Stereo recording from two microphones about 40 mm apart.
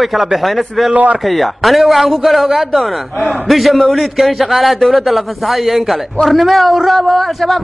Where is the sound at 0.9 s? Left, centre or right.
Right.